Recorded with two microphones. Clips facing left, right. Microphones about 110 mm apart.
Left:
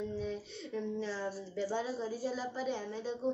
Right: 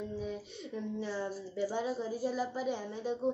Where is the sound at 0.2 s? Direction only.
10° right (ahead or behind).